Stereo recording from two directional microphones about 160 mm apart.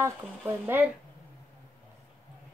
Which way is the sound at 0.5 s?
15° right (ahead or behind).